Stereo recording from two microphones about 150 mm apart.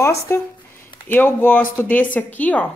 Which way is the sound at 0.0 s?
20° left (ahead or behind).